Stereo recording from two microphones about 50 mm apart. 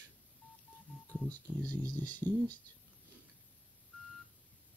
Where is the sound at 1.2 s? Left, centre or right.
Left.